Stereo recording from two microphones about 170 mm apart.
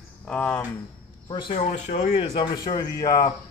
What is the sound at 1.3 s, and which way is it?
A man's voice, 30° left (ahead or behind).